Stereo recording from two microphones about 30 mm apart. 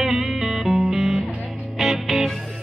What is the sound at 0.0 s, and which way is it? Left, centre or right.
Music, centre.